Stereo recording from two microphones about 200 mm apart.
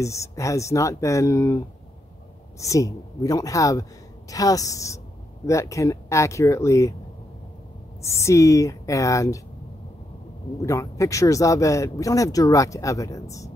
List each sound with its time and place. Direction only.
0.0 s speech: 15° left (ahead or behind)
2.6 s speech: 15° left (ahead or behind)
8.0 s speech: 15° left (ahead or behind)
10.6 s speech: 15° left (ahead or behind)